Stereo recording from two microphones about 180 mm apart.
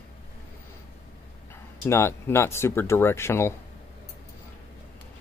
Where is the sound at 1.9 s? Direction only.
15° left (ahead or behind).